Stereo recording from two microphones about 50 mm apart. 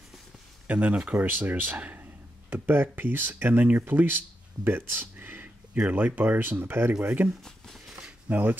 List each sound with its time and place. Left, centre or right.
0.7 s speech: right
2.5 s speech: right
4.6 s a sound: right
5.8 s speech: right
7.4 s a sound: centre
8.3 s speech: right